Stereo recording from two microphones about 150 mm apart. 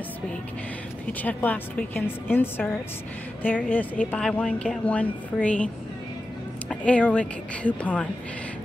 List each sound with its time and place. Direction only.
1.2 s a woman's voice: 10° left (ahead or behind)
6.7 s a woman's voice: 10° left (ahead or behind)